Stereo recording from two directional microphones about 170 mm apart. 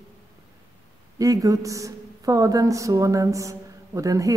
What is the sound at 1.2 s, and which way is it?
A woman's voice, 20° right (ahead or behind).